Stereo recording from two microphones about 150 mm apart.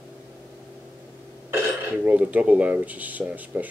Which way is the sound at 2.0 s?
10° right (ahead or behind).